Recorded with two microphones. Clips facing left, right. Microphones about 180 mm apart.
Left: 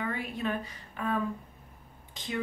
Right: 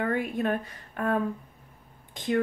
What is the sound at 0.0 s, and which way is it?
A woman's voice, 50° right (ahead or behind).